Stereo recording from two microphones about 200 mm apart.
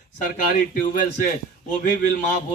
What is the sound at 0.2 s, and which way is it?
Speech, 40° left (ahead or behind).